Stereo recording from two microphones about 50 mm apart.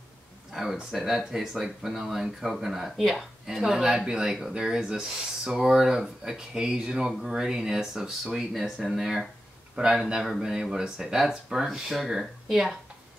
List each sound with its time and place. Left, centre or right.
0.5 s speech: centre